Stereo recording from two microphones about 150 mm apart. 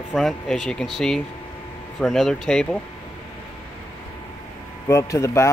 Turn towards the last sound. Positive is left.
turn(degrees=20)  # may be behind; listen again after turning